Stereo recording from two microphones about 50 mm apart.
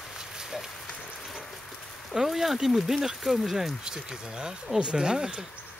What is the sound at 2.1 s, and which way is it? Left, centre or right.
Speech, centre.